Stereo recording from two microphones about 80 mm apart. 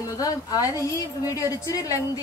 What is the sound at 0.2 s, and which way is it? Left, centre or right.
A woman's voice, left.